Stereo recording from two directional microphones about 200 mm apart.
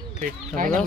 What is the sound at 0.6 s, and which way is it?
Speech, 45° right (ahead or behind).